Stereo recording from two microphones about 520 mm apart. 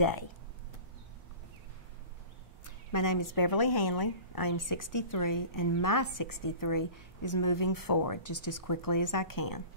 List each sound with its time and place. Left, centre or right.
0.0 s a woman's voice: left
2.6 s a woman's voice: left